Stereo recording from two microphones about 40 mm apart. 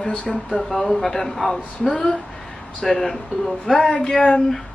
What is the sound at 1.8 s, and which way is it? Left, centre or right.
Speech, centre.